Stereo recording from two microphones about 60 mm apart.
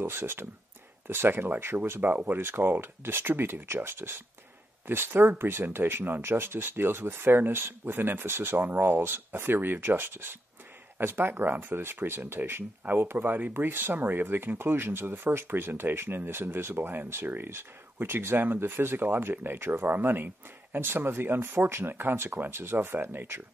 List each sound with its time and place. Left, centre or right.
0.0 s speech: right